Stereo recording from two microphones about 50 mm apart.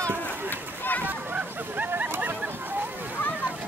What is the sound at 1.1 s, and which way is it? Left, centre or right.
Hubbub, right.